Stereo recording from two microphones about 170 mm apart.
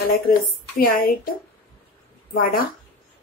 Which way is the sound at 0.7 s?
60° left (ahead or behind).